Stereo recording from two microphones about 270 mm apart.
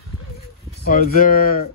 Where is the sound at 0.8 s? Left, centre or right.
Left.